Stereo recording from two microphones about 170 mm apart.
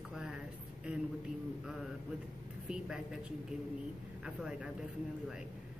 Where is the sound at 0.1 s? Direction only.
5° right (ahead or behind).